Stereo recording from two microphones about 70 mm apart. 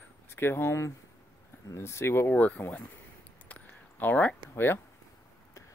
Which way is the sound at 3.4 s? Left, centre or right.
Left.